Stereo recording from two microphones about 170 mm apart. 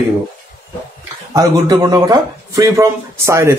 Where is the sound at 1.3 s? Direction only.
20° right (ahead or behind).